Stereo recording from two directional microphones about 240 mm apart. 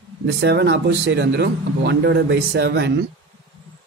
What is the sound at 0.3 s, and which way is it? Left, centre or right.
Speech, right.